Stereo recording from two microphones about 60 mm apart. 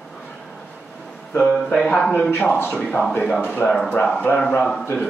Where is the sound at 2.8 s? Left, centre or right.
Centre.